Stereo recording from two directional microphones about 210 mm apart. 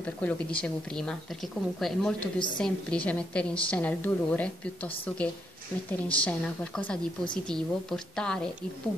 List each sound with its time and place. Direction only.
0.0 s a woman's voice: 5° left (ahead or behind)